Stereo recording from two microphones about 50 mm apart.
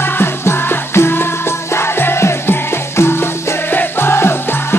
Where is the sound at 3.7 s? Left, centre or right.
Left.